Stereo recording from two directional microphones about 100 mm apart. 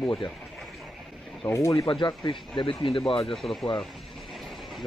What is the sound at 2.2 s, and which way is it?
Speech, 55° left (ahead or behind).